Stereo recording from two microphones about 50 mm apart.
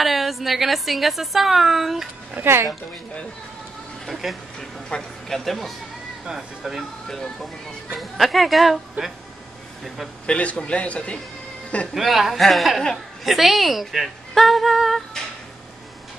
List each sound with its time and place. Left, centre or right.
0.0 s a woman's voice: centre
2.4 s speech: right
4.1 s a woman's voice: centre
4.6 s a woman's voice: centre
6.2 s speech: centre
7.1 s a woman's voice: centre
9.0 s speech: right
10.2 s a man's voice: left
11.9 s a woman's voice: centre